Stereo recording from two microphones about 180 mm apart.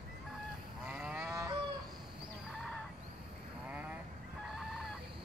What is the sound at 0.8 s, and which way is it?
Cattle, 5° right (ahead or behind).